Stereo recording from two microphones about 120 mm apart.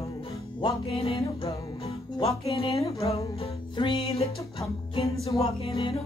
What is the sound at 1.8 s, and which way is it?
Speech, 55° left (ahead or behind).